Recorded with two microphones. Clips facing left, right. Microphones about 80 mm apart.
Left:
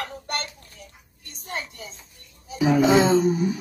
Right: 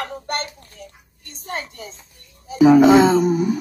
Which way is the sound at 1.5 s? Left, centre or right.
Right.